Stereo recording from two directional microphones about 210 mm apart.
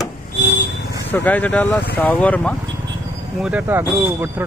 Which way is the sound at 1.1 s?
10° left (ahead or behind).